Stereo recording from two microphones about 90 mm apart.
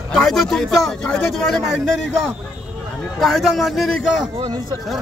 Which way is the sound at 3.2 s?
Centre (ahead or behind).